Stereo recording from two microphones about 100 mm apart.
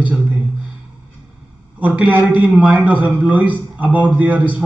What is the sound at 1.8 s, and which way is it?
A man's voice, 15° right (ahead or behind).